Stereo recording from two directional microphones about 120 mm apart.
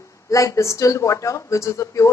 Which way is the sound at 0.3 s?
25° left (ahead or behind).